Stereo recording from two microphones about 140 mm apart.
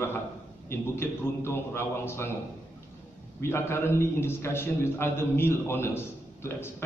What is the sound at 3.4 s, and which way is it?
A man's voice, 20° left (ahead or behind).